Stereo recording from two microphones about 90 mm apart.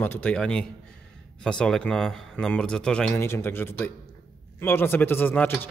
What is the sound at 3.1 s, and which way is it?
Speech, 30° left (ahead or behind).